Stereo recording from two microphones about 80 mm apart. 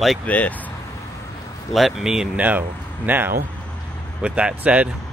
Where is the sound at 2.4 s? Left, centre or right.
Right.